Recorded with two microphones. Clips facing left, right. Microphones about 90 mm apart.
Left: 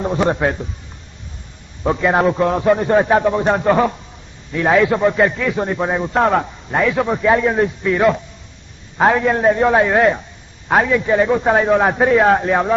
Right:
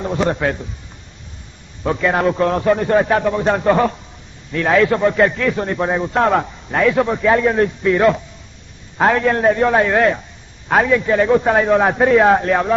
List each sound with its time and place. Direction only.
0.0 s a man's voice: 15° left (ahead or behind)
1.8 s a man's voice: 15° left (ahead or behind)